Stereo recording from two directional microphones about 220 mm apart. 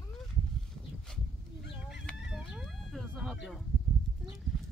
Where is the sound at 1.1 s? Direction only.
5° left (ahead or behind).